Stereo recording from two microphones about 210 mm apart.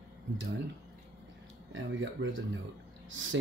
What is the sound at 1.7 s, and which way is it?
Speech, 60° right (ahead or behind).